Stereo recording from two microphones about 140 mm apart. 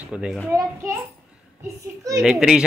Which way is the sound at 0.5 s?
20° right (ahead or behind).